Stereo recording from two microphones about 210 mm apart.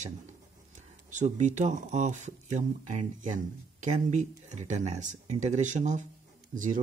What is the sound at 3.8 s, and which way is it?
Speech, 35° right (ahead or behind).